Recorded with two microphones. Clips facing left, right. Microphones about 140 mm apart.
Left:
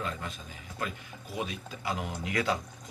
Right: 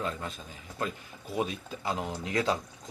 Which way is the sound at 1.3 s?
35° right (ahead or behind).